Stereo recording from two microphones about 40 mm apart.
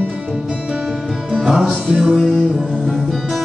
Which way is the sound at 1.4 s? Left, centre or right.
Centre.